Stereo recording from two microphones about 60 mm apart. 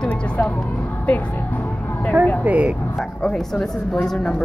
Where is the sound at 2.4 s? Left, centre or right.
Right.